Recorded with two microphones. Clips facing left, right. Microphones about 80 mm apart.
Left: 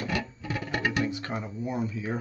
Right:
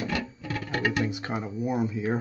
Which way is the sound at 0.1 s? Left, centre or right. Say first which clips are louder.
Even; centre.